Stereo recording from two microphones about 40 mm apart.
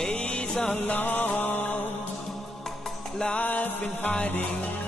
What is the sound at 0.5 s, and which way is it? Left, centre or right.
Music, centre.